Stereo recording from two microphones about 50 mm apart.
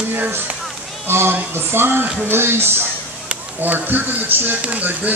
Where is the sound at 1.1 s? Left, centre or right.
Right.